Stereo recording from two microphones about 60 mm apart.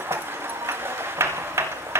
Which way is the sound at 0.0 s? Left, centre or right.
Right.